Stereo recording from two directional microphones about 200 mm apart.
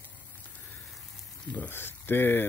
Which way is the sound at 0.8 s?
Centre (ahead or behind).